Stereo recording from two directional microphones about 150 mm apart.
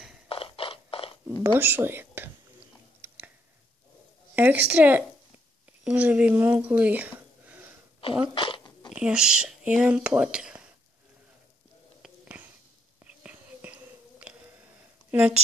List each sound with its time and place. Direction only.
0.3 s a sound: 35° left (ahead or behind)
1.4 s speech: 15° right (ahead or behind)
3.0 s chewing: 15° right (ahead or behind)
4.4 s a woman's voice: 10° right (ahead or behind)
8.4 s dog: 35° left (ahead or behind)
8.9 s speech: 5° right (ahead or behind)
13.0 s whispering: 10° right (ahead or behind)
14.3 s a sound: 5° right (ahead or behind)
15.0 s speech: 10° right (ahead or behind)